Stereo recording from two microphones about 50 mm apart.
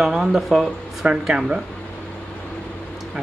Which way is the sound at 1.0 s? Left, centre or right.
Right.